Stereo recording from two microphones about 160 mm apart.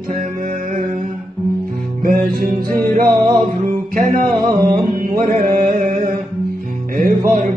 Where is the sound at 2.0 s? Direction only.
65° right (ahead or behind).